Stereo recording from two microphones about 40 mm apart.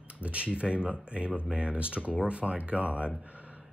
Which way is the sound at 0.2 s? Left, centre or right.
Right.